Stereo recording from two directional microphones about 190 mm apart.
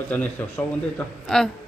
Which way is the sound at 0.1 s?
10° left (ahead or behind).